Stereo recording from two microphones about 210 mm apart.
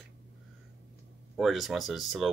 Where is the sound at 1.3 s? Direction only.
Centre (ahead or behind).